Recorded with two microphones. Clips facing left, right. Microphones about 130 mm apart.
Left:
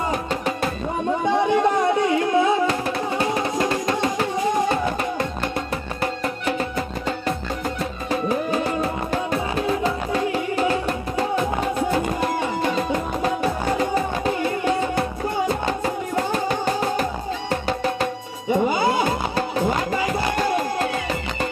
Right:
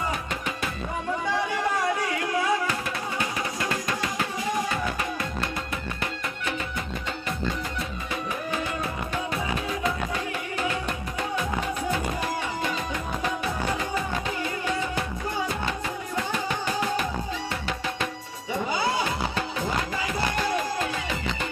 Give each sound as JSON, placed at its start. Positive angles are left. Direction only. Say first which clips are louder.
{"t": 1.2, "sound": "a sound", "louder": "left 11 dB", "side_deg": 25}
{"t": 2.0, "sound": "music", "louder": "left 8 dB", "side_deg": 25}
{"t": 8.1, "sound": "music", "louder": "left 10 dB", "side_deg": 35}
{"t": 18.7, "sound": "music", "louder": "left 6 dB", "side_deg": 50}